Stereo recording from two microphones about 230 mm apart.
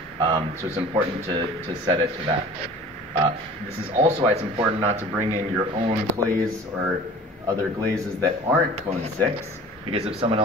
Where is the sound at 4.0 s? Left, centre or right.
Right.